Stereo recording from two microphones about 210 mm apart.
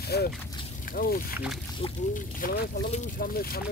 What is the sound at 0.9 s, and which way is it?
Speech, 45° left (ahead or behind).